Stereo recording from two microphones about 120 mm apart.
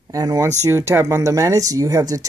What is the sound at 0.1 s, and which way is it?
Speech, 30° right (ahead or behind).